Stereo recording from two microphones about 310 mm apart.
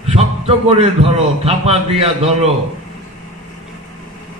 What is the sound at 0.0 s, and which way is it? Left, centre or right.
A man's voice, centre.